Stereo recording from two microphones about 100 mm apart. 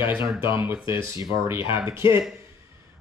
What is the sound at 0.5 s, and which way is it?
Speech, 25° right (ahead or behind).